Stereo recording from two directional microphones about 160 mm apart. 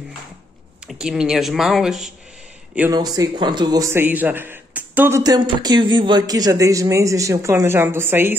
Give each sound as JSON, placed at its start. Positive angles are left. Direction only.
{"t": 0.8, "sound": "speech", "side_deg": -5}
{"t": 2.9, "sound": "a man's voice", "side_deg": -25}
{"t": 5.2, "sound": "speech", "side_deg": -25}